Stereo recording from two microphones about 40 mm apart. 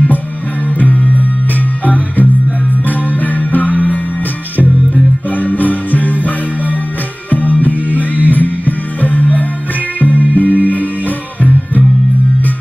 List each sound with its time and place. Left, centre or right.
0.7 s music: left
2.8 s music: left